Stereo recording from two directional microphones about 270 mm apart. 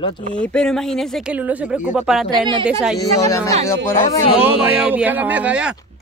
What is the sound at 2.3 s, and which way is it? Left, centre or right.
Speech, centre.